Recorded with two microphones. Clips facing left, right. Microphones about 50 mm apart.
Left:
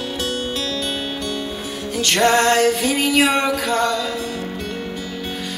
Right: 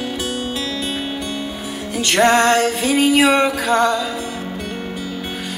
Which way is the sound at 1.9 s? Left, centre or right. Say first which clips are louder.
Right 2 dB; right.